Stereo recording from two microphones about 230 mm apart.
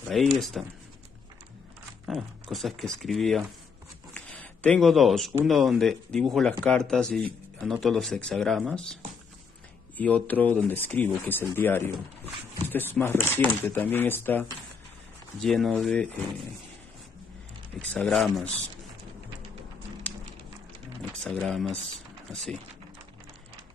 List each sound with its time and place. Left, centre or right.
0.1 s speech: centre
2.0 s speech: centre
9.9 s speech: centre
15.4 s speech: centre
17.9 s speech: centre
21.2 s speech: centre